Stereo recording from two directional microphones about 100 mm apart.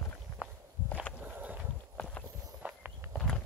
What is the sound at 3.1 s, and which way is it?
Walk, 5° left (ahead or behind).